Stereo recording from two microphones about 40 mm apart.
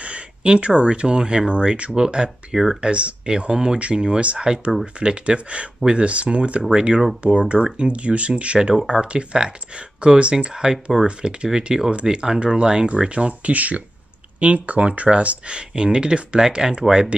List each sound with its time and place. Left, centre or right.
0.0 s speech: right
2.5 s speech: centre
2.8 s speech: right
13.5 s speech: right; by 17.1 s centre